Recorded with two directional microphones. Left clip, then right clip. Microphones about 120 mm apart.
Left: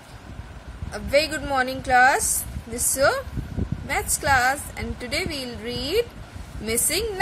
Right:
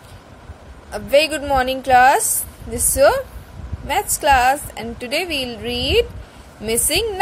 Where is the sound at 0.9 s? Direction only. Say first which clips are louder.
Right 6 dB; 20° right (ahead or behind).